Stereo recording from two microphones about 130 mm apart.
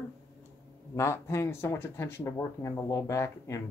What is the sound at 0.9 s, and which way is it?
Speech, 20° left (ahead or behind).